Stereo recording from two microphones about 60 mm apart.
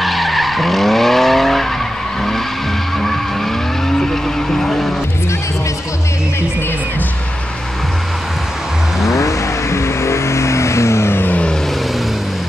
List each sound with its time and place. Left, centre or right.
0.0 s vehicle: centre
4.0 s vehicle: centre
9.0 s vehicle: left